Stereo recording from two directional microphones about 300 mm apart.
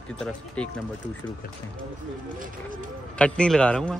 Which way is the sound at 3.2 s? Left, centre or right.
Centre.